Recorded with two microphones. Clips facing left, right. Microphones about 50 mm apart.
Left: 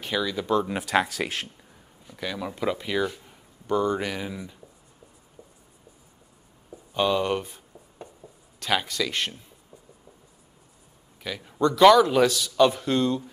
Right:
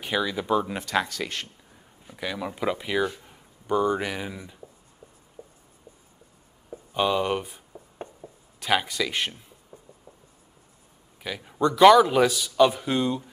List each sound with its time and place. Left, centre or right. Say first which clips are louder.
0.0 s a man's voice: right 1 dB; centre
0.7 s speech: left 2 dB; centre
2.0 s speech: even; centre
5.4 s writing: right 4 dB; right
6.7 s a sound: even; centre
8.2 s speech: right 1 dB; centre
11.2 s a man's voice: even; centre